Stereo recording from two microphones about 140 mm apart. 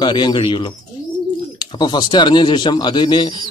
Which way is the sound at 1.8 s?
30° left (ahead or behind).